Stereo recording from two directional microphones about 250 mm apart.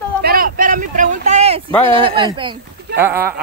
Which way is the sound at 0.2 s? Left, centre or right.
Right.